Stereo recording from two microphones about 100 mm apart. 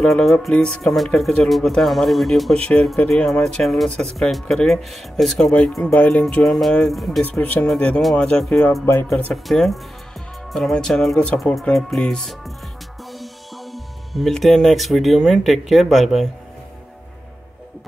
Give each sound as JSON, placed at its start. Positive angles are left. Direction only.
{"t": 0.0, "sound": "speech", "side_deg": 5}
{"t": 5.9, "sound": "music", "side_deg": 15}
{"t": 6.3, "sound": "speech", "side_deg": 5}
{"t": 7.2, "sound": "music", "side_deg": 15}
{"t": 7.6, "sound": "speech", "side_deg": 5}